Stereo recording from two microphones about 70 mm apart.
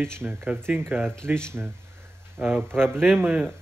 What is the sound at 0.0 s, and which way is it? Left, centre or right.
Speech, right.